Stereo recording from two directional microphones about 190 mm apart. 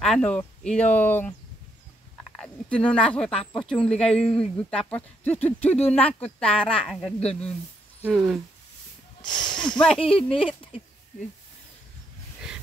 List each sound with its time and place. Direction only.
0.0 s speech: 5° left (ahead or behind)
2.3 s a woman's voice: 5° left (ahead or behind)
9.9 s speech: 30° left (ahead or behind)